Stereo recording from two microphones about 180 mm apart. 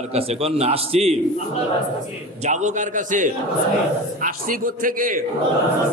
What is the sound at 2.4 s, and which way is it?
A man's voice, 40° right (ahead or behind).